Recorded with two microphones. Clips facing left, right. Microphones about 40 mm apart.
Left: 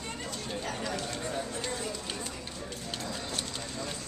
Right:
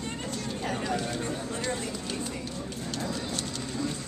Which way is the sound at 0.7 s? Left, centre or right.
Right.